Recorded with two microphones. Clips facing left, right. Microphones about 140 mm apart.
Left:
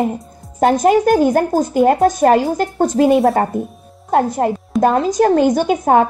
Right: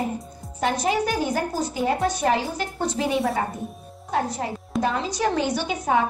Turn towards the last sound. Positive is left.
turn(degrees=50)  # may be behind; listen again after turning